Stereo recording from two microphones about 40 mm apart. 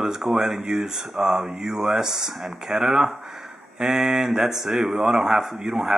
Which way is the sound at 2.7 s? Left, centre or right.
Right.